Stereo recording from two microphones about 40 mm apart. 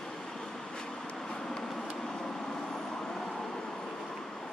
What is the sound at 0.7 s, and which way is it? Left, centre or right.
Vehicle, left.